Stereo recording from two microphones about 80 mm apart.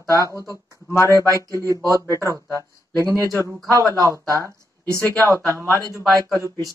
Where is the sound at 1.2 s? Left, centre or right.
Right.